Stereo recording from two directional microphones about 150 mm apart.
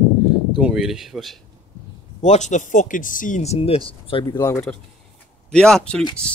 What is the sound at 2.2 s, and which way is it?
Speech, 50° left (ahead or behind).